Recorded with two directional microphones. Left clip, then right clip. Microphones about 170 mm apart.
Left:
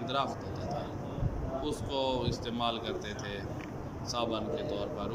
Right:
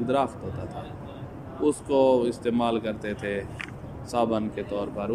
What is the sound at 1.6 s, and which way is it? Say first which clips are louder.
A man's voice: right 13 dB; 40° right (ahead or behind).